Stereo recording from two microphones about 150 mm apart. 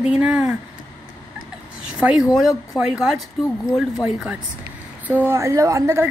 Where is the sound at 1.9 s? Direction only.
5° right (ahead or behind).